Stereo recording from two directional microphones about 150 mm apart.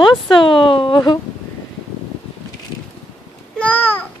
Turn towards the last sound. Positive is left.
turn(degrees=10)  # may be behind; listen again after turning